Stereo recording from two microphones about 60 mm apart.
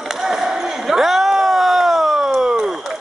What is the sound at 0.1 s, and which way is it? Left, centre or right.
Basketball bounce, centre.